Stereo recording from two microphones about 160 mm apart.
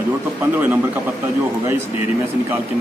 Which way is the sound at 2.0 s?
15° right (ahead or behind).